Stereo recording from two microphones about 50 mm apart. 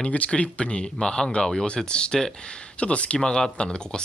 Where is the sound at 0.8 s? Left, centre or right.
Centre.